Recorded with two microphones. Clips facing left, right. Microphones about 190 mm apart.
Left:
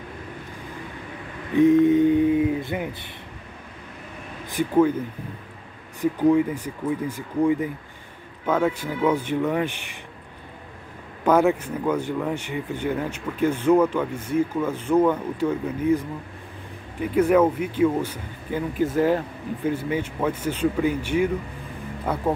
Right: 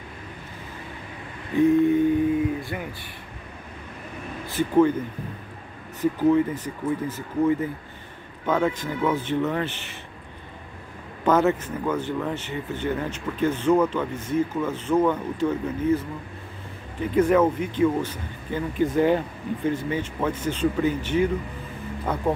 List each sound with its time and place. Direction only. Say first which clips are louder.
1.5 s a sound: left 2 dB; 20° left (ahead or behind)
4.5 s speech: even; 10° left (ahead or behind)
5.9 s speech: left 1 dB; 10° left (ahead or behind)
11.2 s speech: left 1 dB; 10° left (ahead or behind)